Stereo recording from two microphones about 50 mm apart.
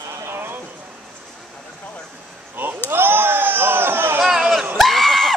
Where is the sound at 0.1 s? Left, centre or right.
Right.